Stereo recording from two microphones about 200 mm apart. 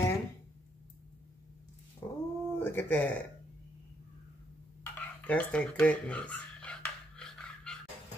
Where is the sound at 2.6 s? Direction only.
10° left (ahead or behind).